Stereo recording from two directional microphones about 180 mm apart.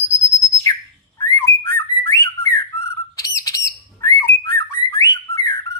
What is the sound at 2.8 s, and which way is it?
Bird, 15° left (ahead or behind).